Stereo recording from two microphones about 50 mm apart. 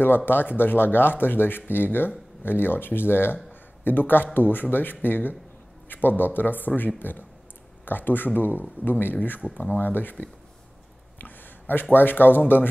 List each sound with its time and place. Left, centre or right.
0.0 s a man's voice: left
11.1 s a man's voice: left